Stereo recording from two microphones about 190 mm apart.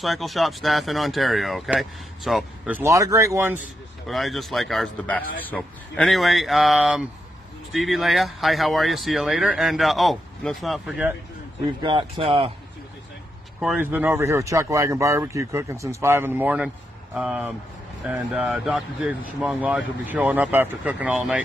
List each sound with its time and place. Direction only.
0.0 s speech: centre (ahead or behind)
4.1 s speech: centre (ahead or behind)
11.8 s speech: 25° right (ahead or behind)
13.6 s speech: 5° right (ahead or behind)